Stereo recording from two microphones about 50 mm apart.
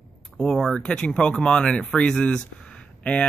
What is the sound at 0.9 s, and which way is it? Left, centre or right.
Speech, left.